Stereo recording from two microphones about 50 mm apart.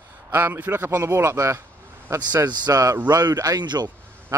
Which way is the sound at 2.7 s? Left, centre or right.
Right.